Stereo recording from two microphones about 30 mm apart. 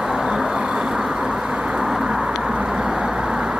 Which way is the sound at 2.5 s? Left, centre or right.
Right.